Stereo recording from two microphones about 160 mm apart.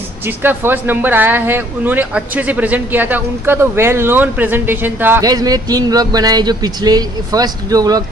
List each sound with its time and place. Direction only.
0.4 s speech: 15° right (ahead or behind)
5.2 s a man's voice: 25° right (ahead or behind)